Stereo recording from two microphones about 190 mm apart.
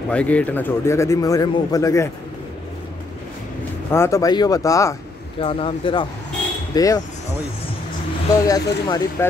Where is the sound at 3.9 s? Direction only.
15° left (ahead or behind).